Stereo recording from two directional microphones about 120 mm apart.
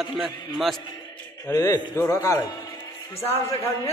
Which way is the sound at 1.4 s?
30° left (ahead or behind).